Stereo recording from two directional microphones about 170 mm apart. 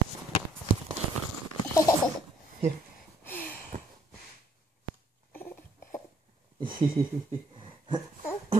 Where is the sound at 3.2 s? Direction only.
10° left (ahead or behind).